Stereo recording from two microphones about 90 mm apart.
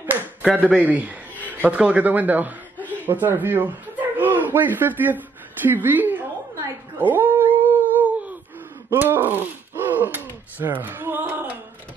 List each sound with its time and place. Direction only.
0.6 s a man's voice: 15° right (ahead or behind)
7.0 s cat: 20° right (ahead or behind)
8.9 s speech: 20° right (ahead or behind)
9.9 s a sound: 20° right (ahead or behind)